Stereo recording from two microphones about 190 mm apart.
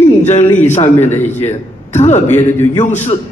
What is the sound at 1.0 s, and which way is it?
Speech, 10° left (ahead or behind).